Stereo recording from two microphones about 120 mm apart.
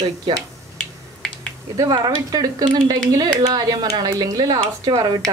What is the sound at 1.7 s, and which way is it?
Speech, 30° right (ahead or behind).